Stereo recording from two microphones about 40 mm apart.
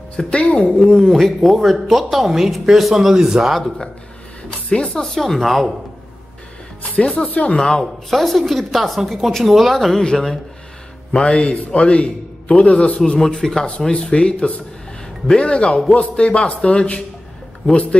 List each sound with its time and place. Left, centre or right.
0.2 s speech: centre
1.0 s speech: centre
3.5 s speech: centre
4.5 s speech: left; by 5.7 s centre
7.0 s a man's voice: left
7.8 s speech: centre
11.1 s a man's voice: left
12.9 s speech: left
13.2 s speech: centre
13.7 s a man's voice: left